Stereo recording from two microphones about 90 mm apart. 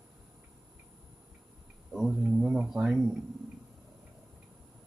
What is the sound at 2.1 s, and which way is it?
Speech, 10° right (ahead or behind).